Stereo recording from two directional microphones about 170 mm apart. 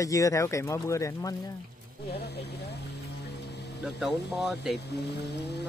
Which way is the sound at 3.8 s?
Centre (ahead or behind).